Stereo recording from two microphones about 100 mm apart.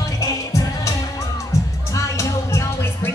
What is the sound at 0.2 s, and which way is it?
Music, 30° left (ahead or behind).